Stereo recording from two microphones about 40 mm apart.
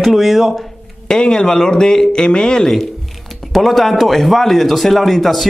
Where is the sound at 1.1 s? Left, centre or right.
Centre.